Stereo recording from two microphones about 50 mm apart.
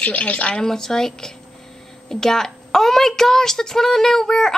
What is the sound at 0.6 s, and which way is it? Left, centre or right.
Speech, centre.